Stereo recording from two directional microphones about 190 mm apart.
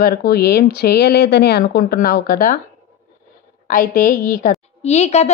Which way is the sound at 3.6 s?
45° left (ahead or behind).